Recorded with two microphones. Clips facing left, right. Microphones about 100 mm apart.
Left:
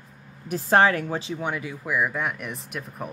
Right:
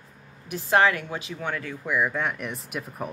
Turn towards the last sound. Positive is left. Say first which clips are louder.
# right 1 dB
turn(degrees=0)  # may be behind; listen again after turning